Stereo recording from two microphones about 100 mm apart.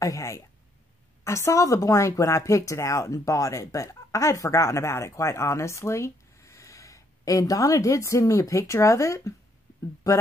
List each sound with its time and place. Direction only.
0.0 s speech: 30° left (ahead or behind)